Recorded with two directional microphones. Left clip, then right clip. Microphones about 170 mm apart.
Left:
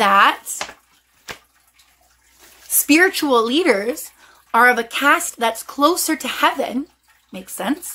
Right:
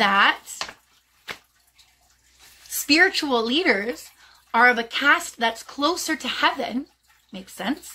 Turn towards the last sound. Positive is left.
turn(degrees=-15)  # may be behind; listen again after turning